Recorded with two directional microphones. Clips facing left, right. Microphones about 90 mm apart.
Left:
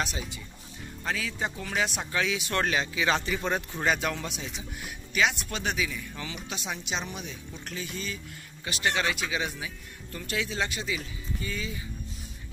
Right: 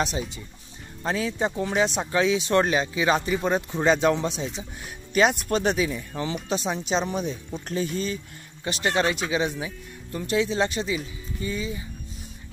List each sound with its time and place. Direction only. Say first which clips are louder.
1.0 s speech: right 6 dB; 30° right (ahead or behind)